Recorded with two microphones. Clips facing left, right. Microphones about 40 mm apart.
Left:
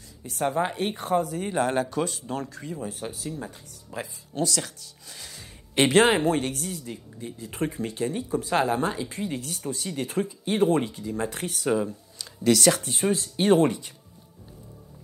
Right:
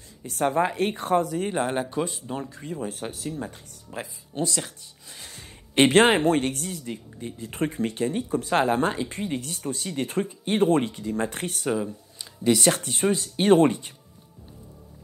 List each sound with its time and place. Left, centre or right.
0.3 s speech: right
1.4 s speech: right
2.9 s speech: right
3.3 s speech: right
5.3 s speech: right
7.3 s speech: right
8.5 s speech: right
12.3 s speech: right
12.7 s speech: right